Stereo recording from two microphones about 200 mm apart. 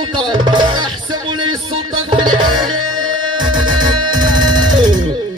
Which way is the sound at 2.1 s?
25° right (ahead or behind).